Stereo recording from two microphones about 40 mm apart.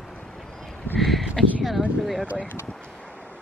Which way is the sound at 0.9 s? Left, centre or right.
Centre.